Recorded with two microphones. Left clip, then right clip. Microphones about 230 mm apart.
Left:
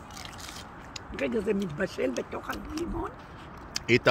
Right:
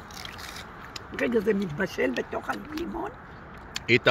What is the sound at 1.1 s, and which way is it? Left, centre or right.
Speech, right.